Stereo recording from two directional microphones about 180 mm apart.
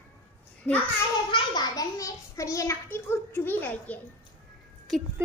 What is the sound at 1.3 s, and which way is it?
A child's voice, 25° left (ahead or behind).